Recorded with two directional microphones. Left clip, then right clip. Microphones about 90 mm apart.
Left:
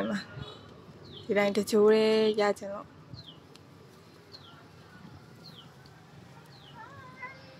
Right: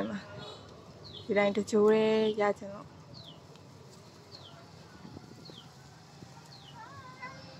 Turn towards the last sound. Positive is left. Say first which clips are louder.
# left 1 dB
turn(degrees=30)  # may be behind; listen again after turning